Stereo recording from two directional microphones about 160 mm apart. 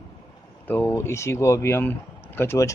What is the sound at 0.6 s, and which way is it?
Speech, 10° left (ahead or behind).